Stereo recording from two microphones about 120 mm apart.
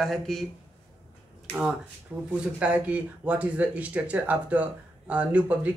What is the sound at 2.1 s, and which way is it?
Speech, 15° right (ahead or behind).